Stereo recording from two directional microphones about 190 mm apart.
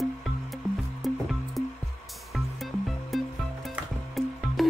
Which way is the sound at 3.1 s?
Centre (ahead or behind).